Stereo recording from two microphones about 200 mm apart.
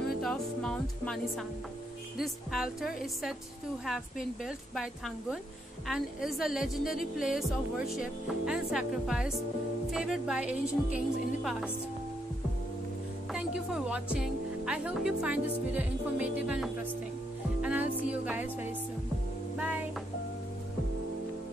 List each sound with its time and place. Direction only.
0.2 s music: 5° left (ahead or behind)
2.1 s speech: centre (ahead or behind)
4.5 s speech: centre (ahead or behind)
13.3 s a woman's voice: 5° right (ahead or behind)
17.6 s music: 5° right (ahead or behind)